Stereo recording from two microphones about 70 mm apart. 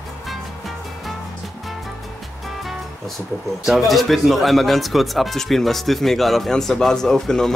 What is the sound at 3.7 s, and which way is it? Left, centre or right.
Speech, centre.